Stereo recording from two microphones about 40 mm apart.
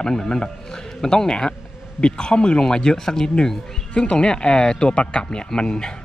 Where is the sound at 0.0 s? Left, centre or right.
Centre.